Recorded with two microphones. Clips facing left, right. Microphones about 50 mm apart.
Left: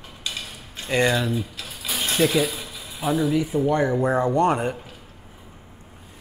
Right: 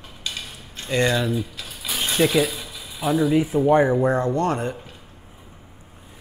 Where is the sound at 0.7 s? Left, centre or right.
Centre.